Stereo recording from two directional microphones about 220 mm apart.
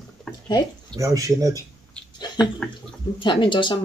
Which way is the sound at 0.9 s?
15° right (ahead or behind).